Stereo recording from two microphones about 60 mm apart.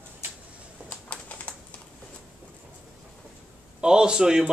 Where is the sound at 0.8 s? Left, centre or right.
Left.